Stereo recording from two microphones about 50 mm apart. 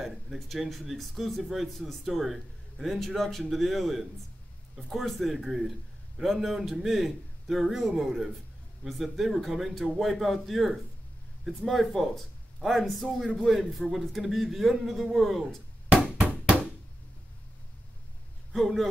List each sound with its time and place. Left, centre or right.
0.0 s speech: centre
15.9 s bouncing: right
18.5 s a man's voice: centre